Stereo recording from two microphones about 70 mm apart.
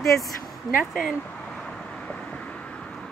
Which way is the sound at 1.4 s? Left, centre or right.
Centre.